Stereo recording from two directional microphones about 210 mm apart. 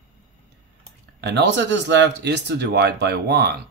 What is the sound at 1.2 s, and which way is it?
Speech, 55° right (ahead or behind).